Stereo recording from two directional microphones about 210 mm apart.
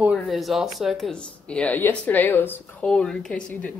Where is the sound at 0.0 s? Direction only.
Centre (ahead or behind).